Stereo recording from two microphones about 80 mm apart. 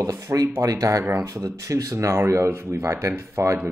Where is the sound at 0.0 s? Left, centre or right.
Right.